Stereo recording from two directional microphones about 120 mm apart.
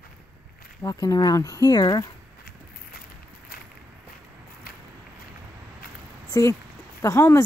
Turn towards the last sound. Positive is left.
turn(degrees=25)  # may be behind; listen again after turning